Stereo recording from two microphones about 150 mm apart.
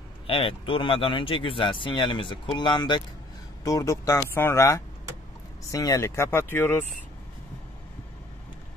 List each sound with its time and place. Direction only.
0.3 s speech: 35° left (ahead or behind); by 6.8 s 15° left (ahead or behind)